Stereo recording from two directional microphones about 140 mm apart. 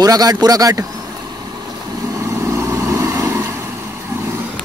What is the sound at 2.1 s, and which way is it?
Vehicle, 20° right (ahead or behind).